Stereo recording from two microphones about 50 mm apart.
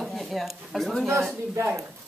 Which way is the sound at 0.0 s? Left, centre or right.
Centre.